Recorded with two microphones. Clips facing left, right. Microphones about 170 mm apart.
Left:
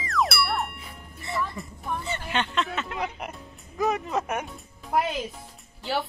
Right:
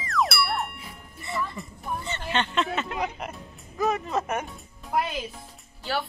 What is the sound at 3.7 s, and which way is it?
Speech, 10° left (ahead or behind).